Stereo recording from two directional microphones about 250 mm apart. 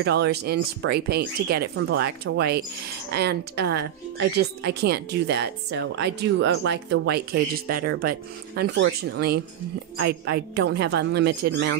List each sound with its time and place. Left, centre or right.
0.0 s speech: right